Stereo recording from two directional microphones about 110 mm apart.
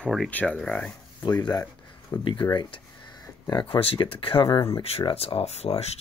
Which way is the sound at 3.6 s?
55° left (ahead or behind).